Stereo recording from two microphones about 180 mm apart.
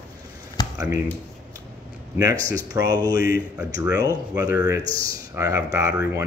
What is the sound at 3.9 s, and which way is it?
Speech, 20° right (ahead or behind).